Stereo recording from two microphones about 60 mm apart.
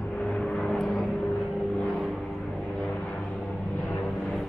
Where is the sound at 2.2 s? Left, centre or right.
Centre.